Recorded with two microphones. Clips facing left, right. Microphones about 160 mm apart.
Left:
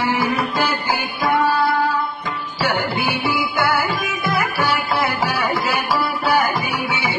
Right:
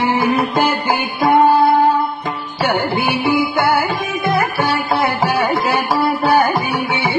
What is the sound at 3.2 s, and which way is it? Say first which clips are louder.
Music: right 6 dB; 50° right (ahead or behind).